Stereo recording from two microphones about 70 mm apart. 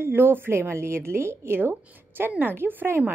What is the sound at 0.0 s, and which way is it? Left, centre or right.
Speech, right.